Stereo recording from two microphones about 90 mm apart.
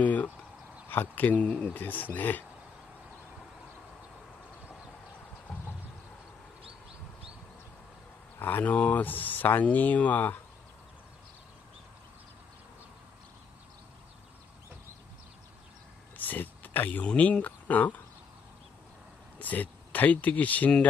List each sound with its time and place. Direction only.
0.0 s a sound: 15° left (ahead or behind)
0.8 s speech: 20° left (ahead or behind)
8.4 s speech: 20° left (ahead or behind)
16.2 s speech: 20° left (ahead or behind)
19.3 s speech: 20° left (ahead or behind)